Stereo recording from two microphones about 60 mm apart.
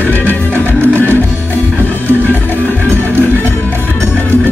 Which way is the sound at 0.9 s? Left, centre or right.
Right.